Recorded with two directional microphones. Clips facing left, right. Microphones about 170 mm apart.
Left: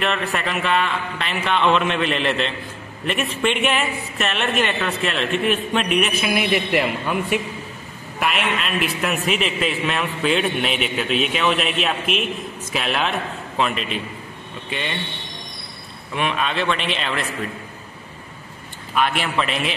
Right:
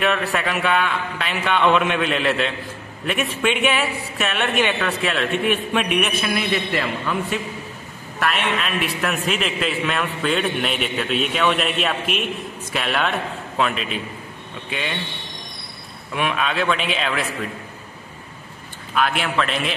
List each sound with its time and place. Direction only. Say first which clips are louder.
0.0 s a man's voice: right 2 dB; centre (ahead or behind)
6.3 s a man's voice: left 3 dB; 15° left (ahead or behind)
8.3 s a man's voice: even; centre (ahead or behind)
16.2 s a man's voice: even; centre (ahead or behind)
18.9 s a man's voice: even; centre (ahead or behind)